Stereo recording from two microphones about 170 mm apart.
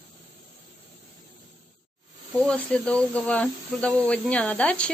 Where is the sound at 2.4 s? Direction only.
5° left (ahead or behind).